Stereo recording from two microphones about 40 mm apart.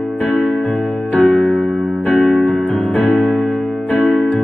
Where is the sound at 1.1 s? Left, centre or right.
Left.